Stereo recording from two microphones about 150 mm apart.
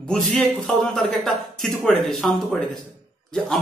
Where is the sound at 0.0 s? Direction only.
5° left (ahead or behind).